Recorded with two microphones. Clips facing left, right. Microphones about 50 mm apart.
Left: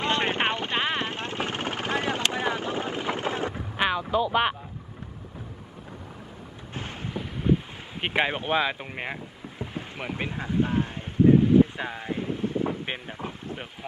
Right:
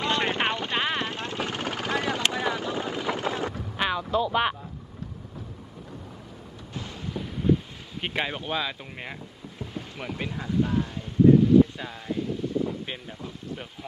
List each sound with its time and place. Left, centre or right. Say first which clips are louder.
0.0 s vehicle: even; left
2.3 s boat: even; left
3.5 s vehicle: left 2 dB; centre
7.2 s a sound: right 1 dB; left